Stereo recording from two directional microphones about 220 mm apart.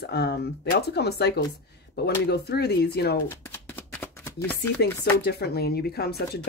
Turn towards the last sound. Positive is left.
turn(degrees=45)  # may be behind; listen again after turning